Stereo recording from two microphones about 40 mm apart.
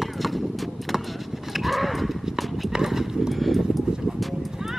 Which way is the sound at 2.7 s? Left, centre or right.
Centre.